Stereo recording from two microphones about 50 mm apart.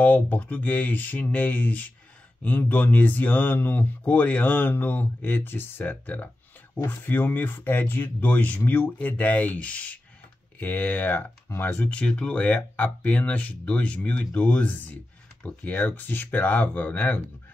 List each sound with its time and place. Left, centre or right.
0.0 s speech: left
14.7 s speech: left